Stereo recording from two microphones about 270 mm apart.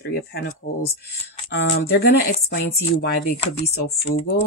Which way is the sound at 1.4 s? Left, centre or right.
Left.